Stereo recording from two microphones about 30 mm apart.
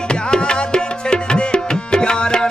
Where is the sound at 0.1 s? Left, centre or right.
Left.